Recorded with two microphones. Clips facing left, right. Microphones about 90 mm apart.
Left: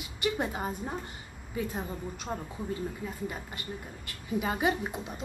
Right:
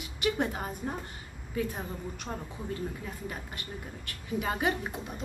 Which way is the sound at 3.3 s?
Centre (ahead or behind).